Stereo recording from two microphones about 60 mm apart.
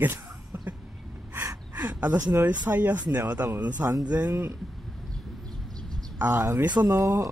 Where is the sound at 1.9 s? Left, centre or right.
Right.